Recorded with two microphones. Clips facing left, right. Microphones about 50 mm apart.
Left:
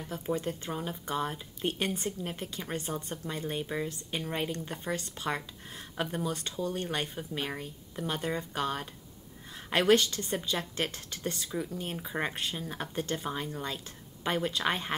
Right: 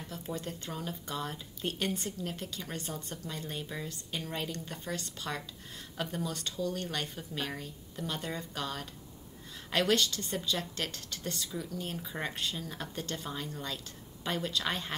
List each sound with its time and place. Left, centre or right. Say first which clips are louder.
0.0 s speech: left 6 dB; left